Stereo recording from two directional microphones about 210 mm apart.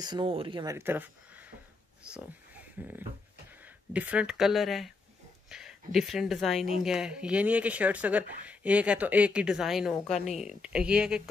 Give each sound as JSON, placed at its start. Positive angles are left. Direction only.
{"t": 0.0, "sound": "speech", "side_deg": -20}